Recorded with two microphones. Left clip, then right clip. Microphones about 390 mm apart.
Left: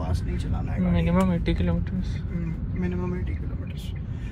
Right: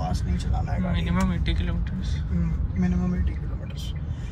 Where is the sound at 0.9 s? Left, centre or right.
Centre.